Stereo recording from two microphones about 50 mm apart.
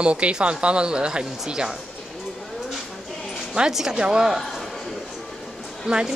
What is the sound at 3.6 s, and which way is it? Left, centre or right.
Speech, centre.